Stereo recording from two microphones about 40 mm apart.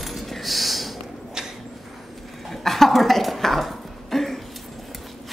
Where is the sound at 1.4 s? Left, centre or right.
Centre.